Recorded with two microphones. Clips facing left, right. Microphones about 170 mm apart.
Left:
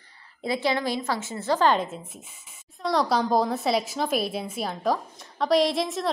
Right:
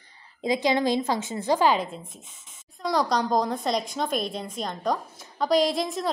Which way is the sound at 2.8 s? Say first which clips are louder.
Left 1 dB; 5° left (ahead or behind).